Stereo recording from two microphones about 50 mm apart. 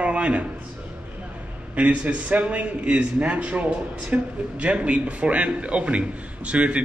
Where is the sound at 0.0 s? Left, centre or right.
Right.